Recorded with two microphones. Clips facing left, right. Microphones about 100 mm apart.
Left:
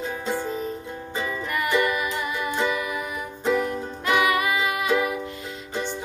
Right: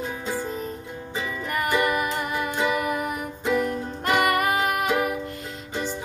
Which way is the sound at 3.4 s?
Centre (ahead or behind).